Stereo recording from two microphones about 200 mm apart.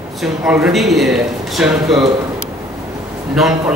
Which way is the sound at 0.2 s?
5° right (ahead or behind).